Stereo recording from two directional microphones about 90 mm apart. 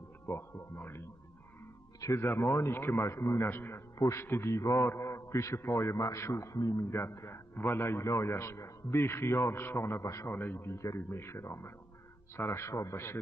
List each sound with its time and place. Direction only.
0.3 s a man's voice: 30° left (ahead or behind)
6.9 s a man's voice: 25° left (ahead or behind)